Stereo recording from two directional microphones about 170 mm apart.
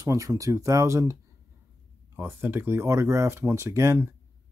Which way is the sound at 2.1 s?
10° right (ahead or behind).